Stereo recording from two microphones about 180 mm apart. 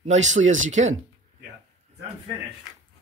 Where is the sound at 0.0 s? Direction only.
40° right (ahead or behind).